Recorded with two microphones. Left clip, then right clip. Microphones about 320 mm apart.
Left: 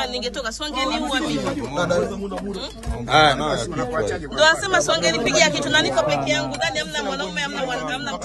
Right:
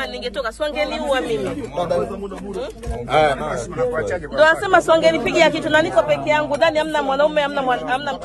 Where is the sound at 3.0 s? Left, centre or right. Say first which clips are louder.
Left 1 dB; left.